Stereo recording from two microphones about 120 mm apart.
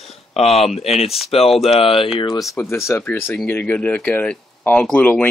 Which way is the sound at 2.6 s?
25° left (ahead or behind).